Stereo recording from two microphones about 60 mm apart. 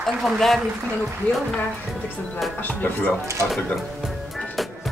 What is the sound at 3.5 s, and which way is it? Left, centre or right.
Speech, centre.